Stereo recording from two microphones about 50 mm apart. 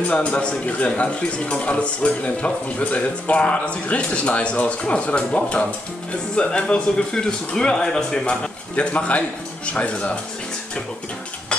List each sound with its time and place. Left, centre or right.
0.4 s a man's voice: left